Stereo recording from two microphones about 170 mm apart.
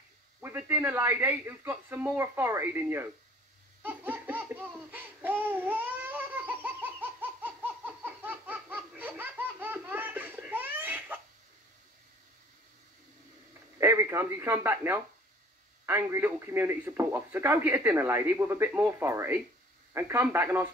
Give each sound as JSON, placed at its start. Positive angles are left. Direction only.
{"t": 0.4, "sound": "a man's voice", "side_deg": -10}
{"t": 3.8, "sound": "laughter", "side_deg": -10}
{"t": 13.7, "sound": "a man's voice", "side_deg": -15}